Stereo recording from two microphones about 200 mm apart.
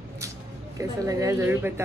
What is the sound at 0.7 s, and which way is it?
A woman's voice, 15° right (ahead or behind).